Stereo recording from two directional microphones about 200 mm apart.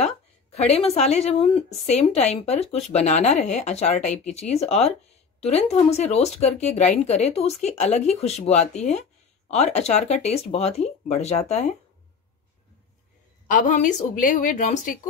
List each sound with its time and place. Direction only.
0.7 s speech: 30° left (ahead or behind)
13.5 s speech: 40° left (ahead or behind)